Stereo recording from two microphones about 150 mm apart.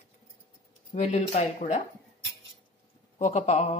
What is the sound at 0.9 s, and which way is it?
Speech, 45° left (ahead or behind).